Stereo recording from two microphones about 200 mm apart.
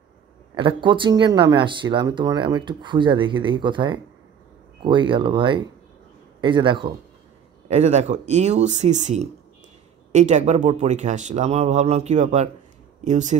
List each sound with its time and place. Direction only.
0.6 s speech: 25° right (ahead or behind)